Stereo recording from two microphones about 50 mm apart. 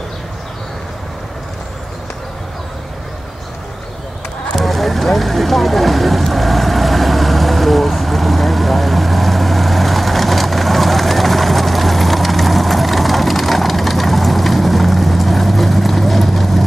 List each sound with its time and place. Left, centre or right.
4.6 s vehicle: centre